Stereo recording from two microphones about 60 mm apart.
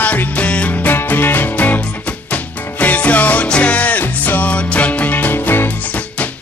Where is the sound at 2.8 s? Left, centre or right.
Left.